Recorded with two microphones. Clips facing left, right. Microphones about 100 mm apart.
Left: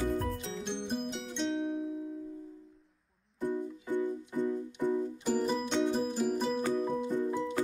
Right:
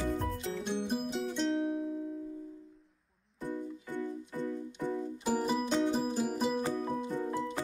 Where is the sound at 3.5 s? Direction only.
15° left (ahead or behind).